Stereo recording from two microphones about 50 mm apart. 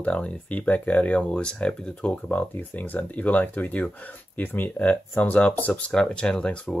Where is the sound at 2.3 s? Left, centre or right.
Left.